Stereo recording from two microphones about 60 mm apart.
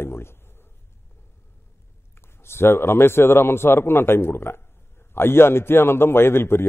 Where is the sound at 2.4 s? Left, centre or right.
Left.